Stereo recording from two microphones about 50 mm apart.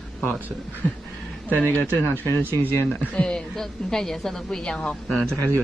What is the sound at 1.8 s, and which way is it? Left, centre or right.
Speech, left.